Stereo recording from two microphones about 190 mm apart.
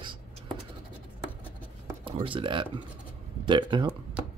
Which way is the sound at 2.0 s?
25° right (ahead or behind).